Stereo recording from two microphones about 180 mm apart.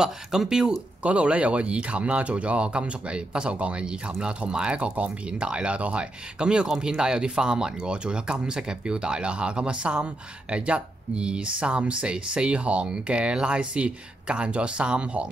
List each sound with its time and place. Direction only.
0.0 s speech: 5° right (ahead or behind)